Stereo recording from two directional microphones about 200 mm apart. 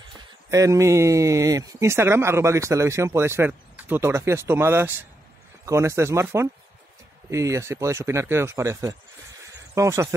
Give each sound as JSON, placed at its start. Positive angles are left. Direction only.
{"t": 0.5, "sound": "speech", "side_deg": -15}